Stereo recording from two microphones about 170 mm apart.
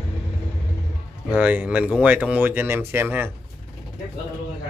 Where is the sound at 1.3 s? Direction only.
10° right (ahead or behind).